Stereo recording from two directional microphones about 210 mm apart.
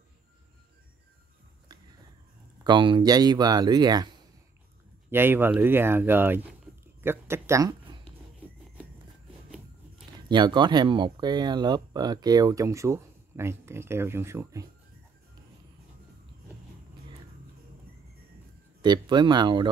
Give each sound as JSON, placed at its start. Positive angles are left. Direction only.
{"t": 2.6, "sound": "speech", "side_deg": -25}
{"t": 7.0, "sound": "a sound", "side_deg": -10}
{"t": 10.2, "sound": "speech", "side_deg": -20}
{"t": 18.8, "sound": "speech", "side_deg": -20}